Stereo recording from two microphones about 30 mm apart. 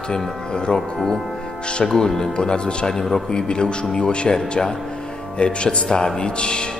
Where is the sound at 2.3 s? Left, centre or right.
Left.